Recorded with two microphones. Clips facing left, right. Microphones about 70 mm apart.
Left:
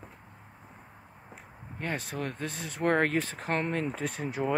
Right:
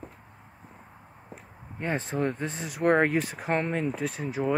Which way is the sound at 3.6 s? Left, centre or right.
Centre.